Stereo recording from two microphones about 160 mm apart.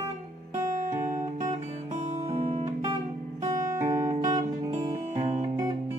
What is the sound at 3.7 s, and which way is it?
Music, 20° right (ahead or behind).